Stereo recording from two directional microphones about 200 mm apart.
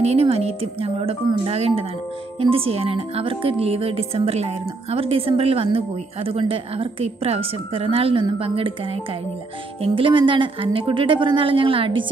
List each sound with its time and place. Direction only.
0.0 s speech: 30° right (ahead or behind)
9.8 s speech: 25° right (ahead or behind)